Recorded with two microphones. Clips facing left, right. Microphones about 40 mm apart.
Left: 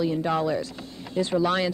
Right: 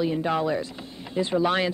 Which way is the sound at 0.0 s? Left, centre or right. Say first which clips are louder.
Even; centre.